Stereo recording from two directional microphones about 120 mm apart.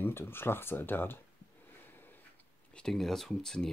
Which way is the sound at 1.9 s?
15° left (ahead or behind).